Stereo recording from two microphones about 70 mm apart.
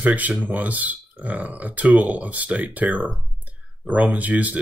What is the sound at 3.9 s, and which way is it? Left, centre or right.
Speech, right.